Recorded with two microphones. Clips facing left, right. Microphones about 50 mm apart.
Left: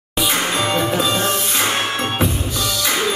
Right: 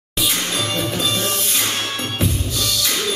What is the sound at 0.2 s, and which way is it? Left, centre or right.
Music, centre.